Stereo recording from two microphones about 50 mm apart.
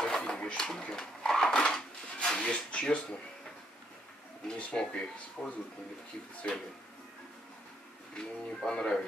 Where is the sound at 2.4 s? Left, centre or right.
Left.